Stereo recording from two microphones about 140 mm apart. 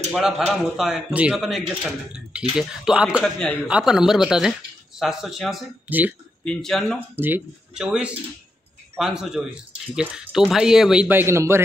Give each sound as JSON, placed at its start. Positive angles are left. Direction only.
{"t": 0.1, "sound": "a man's voice", "side_deg": -5}
{"t": 5.9, "sound": "speech", "side_deg": -10}
{"t": 6.4, "sound": "a man's voice", "side_deg": 5}
{"t": 7.2, "sound": "a man's voice", "side_deg": -15}